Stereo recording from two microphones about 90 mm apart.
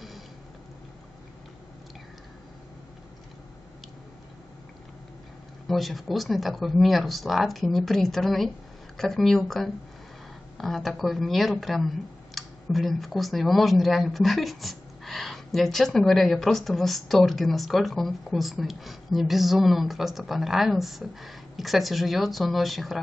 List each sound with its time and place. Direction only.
5.7 s speech: centre (ahead or behind)